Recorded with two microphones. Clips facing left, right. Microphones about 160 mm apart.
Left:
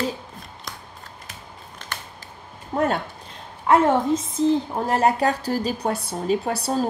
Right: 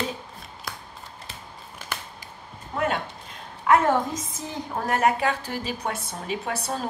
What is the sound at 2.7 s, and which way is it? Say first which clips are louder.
Speech: left 4 dB; 35° left (ahead or behind).